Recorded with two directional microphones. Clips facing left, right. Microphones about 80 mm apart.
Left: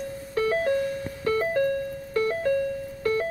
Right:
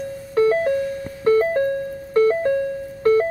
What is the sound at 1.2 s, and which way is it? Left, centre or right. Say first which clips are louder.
Music: right 8 dB; right.